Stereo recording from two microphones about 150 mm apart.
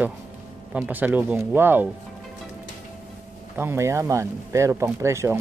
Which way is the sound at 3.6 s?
15° right (ahead or behind).